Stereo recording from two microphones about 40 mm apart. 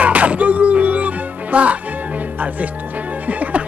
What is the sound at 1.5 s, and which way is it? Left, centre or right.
Speech, right.